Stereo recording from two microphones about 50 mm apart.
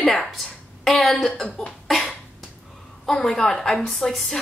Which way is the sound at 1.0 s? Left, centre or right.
Centre.